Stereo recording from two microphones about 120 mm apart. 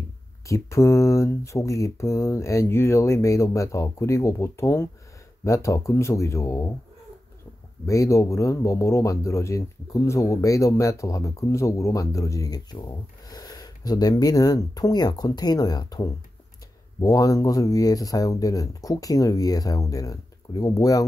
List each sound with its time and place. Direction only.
0.5 s speech: 25° left (ahead or behind)
7.8 s speech: 25° left (ahead or behind)